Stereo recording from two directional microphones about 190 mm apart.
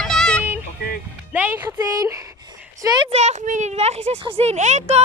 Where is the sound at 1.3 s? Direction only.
10° right (ahead or behind).